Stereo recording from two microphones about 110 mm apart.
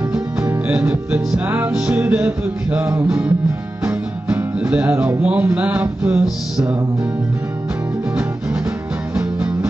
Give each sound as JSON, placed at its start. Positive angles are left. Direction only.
{"t": 0.1, "sound": "music", "side_deg": -15}
{"t": 9.1, "sound": "music", "side_deg": -10}